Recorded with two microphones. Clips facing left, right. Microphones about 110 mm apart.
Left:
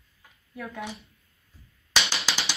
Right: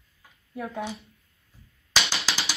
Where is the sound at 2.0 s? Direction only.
Centre (ahead or behind).